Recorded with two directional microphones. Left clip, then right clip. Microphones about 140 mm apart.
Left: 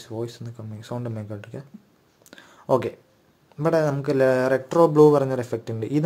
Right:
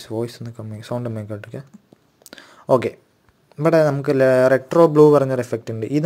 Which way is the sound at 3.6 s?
30° right (ahead or behind).